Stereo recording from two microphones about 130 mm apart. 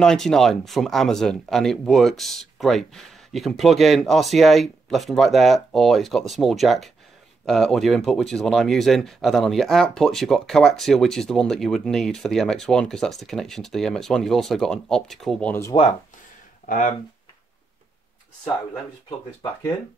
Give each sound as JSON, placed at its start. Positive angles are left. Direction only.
{"t": 0.0, "sound": "speech", "side_deg": 5}
{"t": 15.7, "sound": "speech", "side_deg": 40}
{"t": 16.6, "sound": "speech", "side_deg": 90}